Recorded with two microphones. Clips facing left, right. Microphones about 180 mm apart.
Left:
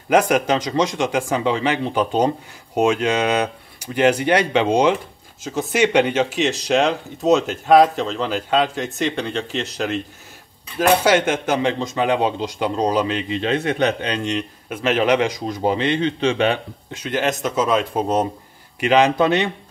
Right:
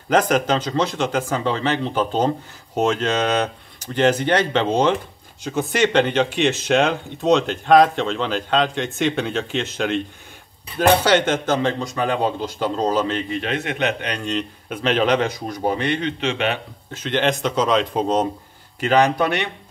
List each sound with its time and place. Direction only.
0.1 s speech: 10° left (ahead or behind)
13.4 s speech: 30° left (ahead or behind)
14.2 s speech: 10° left (ahead or behind); by 16.5 s 30° left (ahead or behind)
16.9 s speech: 10° left (ahead or behind)